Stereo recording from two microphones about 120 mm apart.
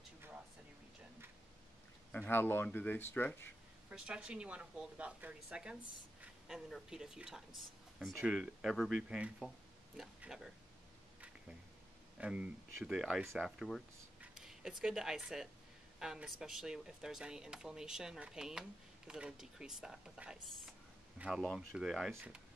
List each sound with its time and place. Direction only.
2.1 s speech: 15° left (ahead or behind)
3.9 s a woman's voice: 10° right (ahead or behind)
12.2 s a woman's voice: 10° right (ahead or behind)
21.4 s a woman's voice: 5° left (ahead or behind); by 22.4 s 10° right (ahead or behind)